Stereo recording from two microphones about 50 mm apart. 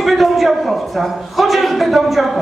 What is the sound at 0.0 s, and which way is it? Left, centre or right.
A man's voice, centre.